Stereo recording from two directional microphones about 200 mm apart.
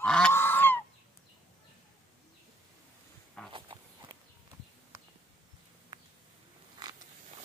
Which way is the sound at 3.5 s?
25° right (ahead or behind).